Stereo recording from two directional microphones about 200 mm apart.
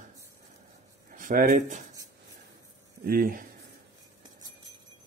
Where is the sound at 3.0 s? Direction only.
45° right (ahead or behind).